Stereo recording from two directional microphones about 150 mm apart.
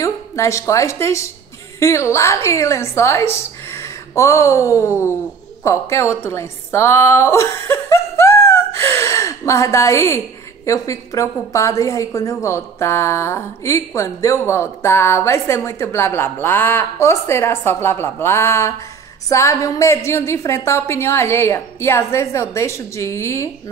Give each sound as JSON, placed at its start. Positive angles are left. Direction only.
{"t": 0.0, "sound": "a woman's voice", "side_deg": 20}